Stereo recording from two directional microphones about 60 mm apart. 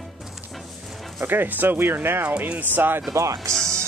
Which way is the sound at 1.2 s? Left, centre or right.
Right.